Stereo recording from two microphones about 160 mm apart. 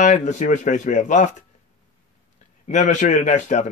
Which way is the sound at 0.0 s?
50° left (ahead or behind).